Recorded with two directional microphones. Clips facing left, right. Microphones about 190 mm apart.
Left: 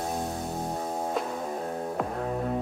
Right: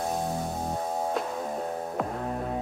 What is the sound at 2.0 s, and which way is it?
Music, centre (ahead or behind).